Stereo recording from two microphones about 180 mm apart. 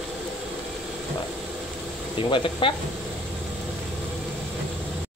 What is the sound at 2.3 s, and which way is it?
Speech, 30° left (ahead or behind).